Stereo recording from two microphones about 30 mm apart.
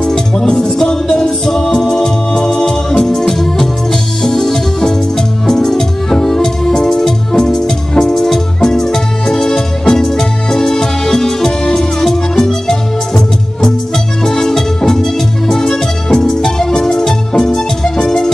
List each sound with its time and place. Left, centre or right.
0.6 s music: centre
3.1 s music: centre
4.2 s organ: centre
5.5 s music: centre
14.2 s music: centre
15.5 s music: left